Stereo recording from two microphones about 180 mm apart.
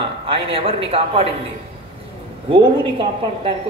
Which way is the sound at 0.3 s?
30° right (ahead or behind).